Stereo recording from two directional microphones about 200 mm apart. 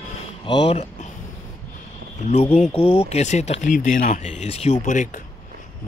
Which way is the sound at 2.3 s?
35° left (ahead or behind).